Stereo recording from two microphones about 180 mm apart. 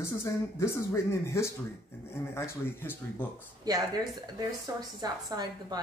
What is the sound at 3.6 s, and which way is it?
Speech, 20° right (ahead or behind).